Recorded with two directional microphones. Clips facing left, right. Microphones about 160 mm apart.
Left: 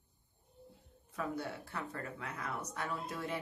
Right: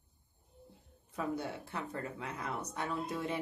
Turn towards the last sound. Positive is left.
turn(degrees=-20)  # may be behind; listen again after turning